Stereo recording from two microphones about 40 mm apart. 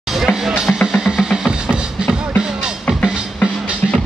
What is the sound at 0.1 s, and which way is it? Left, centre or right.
Music, centre.